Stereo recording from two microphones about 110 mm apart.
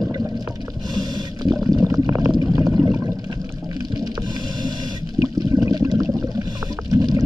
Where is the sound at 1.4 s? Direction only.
35° right (ahead or behind).